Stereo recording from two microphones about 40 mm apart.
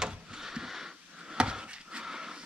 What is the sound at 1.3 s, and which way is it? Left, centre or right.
Wood, right.